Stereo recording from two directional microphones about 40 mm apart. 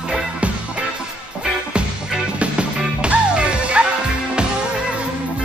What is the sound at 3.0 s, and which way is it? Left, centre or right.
Music, right.